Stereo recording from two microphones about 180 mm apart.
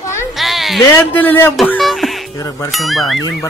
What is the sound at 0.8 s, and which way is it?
Speech, 10° left (ahead or behind).